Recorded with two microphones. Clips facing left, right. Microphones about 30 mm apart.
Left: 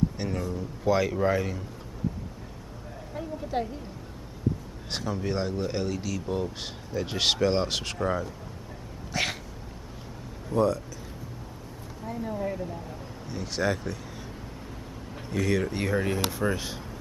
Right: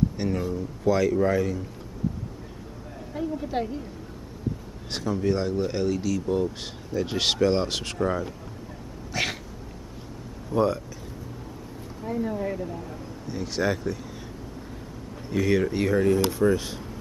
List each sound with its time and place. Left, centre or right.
0.2 s speech: centre
0.8 s a man's voice: centre
3.2 s a woman's voice: centre
4.9 s speech: centre
9.1 s cat: centre
10.5 s speech: right
12.0 s speech: centre
15.2 s speech: centre